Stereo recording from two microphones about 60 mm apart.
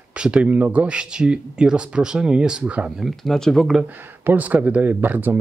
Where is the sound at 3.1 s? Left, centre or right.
Centre.